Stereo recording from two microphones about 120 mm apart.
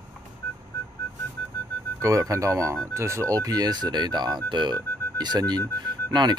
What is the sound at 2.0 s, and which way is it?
Speech, 25° right (ahead or behind).